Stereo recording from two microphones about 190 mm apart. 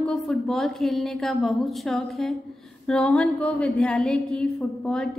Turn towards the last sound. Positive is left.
turn(degrees=5)  # may be behind; listen again after turning